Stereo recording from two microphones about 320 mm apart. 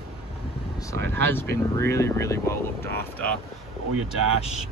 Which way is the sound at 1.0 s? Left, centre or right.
Right.